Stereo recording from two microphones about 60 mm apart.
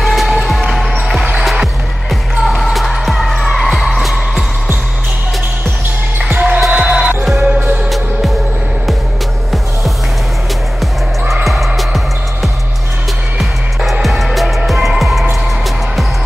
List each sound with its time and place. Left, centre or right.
0.0 s music: centre
2.0 s basketball bounce: centre
6.3 s music: right
6.7 s music: centre
11.4 s music: centre
14.0 s music: centre